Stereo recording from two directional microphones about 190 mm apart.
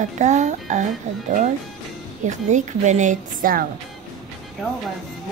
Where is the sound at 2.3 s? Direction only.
40° right (ahead or behind).